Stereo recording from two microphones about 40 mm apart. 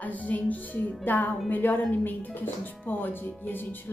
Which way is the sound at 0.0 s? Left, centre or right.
Left.